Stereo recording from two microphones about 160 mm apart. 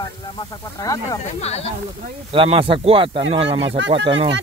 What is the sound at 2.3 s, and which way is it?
Speech, 35° right (ahead or behind).